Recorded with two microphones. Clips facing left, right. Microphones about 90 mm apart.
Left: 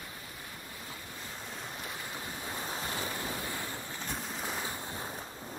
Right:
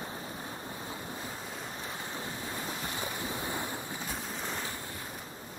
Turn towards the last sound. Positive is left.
turn(degrees=0)  # may be behind; listen again after turning